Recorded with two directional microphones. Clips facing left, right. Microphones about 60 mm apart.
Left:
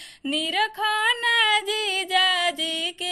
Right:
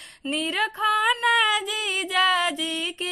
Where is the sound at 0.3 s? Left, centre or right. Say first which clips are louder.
Left 1 dB; right.